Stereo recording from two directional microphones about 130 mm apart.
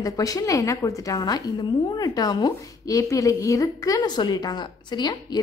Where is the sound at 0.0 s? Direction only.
25° left (ahead or behind).